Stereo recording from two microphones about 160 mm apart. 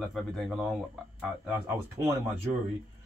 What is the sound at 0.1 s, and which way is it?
Speech, centre (ahead or behind).